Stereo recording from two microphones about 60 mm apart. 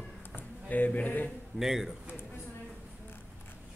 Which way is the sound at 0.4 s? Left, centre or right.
Left.